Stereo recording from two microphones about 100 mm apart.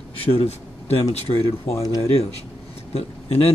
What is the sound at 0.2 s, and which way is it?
Speech, 75° left (ahead or behind).